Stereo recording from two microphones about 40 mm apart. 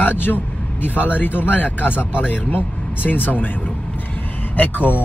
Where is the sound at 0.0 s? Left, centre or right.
Left.